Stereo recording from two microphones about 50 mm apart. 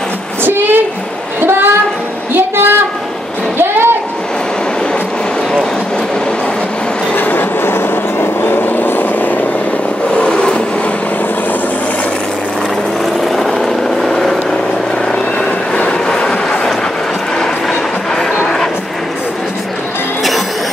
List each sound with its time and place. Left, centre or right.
0.4 s a sound: right
3.5 s vehicle: right
7.2 s vehicle: left
10.1 s vehicle: centre
13.0 s vehicle: centre
15.3 s vehicle: left
16.1 s train: centre